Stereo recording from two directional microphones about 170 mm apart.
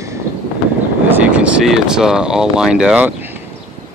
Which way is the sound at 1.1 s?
10° right (ahead or behind).